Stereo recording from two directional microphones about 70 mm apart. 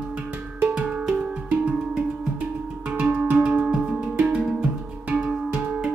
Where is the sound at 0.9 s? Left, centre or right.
Centre.